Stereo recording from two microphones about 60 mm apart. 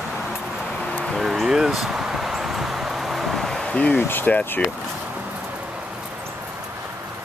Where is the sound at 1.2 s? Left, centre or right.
Centre.